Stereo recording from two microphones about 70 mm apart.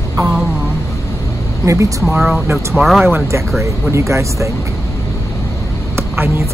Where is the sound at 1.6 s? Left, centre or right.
Right.